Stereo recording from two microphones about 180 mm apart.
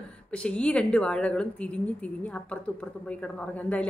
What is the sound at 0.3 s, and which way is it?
A woman's voice, 5° left (ahead or behind).